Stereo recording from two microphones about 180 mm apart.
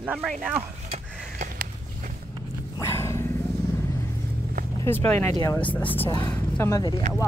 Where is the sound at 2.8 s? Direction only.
15° left (ahead or behind).